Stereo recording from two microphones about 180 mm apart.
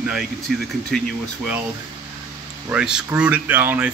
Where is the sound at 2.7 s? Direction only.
5° right (ahead or behind).